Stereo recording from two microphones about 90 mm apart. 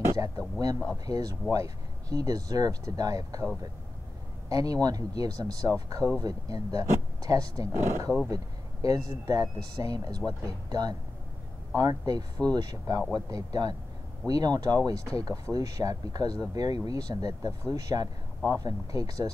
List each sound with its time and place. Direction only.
0.0 s a sound: 35° right (ahead or behind)
1.0 s speech: 40° right (ahead or behind)
4.5 s a man's voice: 40° right (ahead or behind)
8.8 s speech: 45° right (ahead or behind)